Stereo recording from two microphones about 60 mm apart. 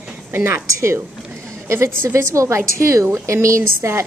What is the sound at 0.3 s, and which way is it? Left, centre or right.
A woman's voice, right.